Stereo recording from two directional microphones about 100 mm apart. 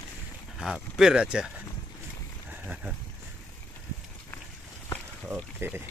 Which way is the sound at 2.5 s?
15° right (ahead or behind).